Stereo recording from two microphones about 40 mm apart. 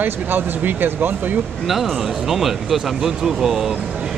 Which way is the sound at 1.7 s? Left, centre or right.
Centre.